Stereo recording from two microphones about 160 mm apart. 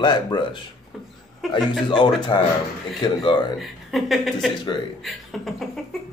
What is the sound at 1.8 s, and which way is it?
Speech, 30° left (ahead or behind).